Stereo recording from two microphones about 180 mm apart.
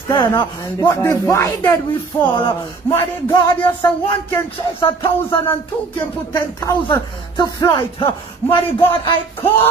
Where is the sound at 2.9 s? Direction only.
20° left (ahead or behind).